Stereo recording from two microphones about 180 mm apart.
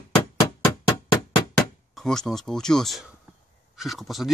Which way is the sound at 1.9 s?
5° left (ahead or behind).